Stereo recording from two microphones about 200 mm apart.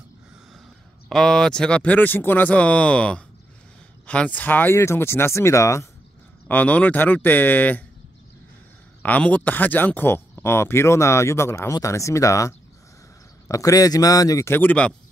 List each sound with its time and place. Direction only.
1.0 s speech: centre (ahead or behind)
9.0 s speech: 5° left (ahead or behind)